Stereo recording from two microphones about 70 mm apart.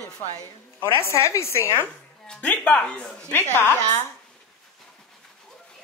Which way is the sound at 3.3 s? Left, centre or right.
Left.